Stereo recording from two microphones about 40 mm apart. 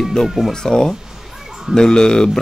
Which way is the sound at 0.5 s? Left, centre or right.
Centre.